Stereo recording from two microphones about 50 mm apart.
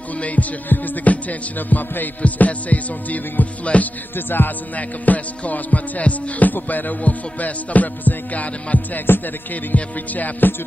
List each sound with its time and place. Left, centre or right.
0.2 s music: left